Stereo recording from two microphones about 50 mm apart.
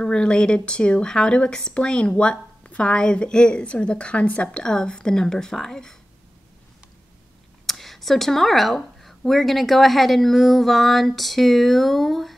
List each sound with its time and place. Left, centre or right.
0.0 s a woman's voice: centre
7.6 s speech: centre